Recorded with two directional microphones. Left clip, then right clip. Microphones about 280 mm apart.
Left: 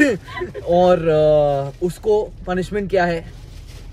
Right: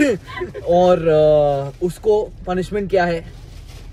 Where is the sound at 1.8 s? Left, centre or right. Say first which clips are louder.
Right 1 dB; left.